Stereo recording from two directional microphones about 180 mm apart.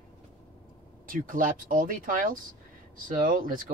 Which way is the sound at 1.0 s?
50° right (ahead or behind).